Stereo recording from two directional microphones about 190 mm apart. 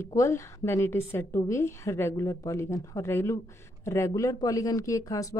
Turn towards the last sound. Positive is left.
turn(degrees=15)  # may be behind; listen again after turning